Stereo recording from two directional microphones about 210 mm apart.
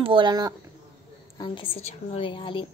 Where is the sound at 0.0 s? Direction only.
25° right (ahead or behind).